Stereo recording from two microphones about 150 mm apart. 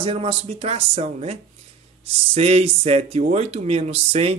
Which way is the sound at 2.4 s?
45° right (ahead or behind).